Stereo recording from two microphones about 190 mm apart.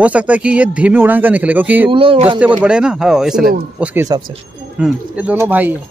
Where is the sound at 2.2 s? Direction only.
10° right (ahead or behind).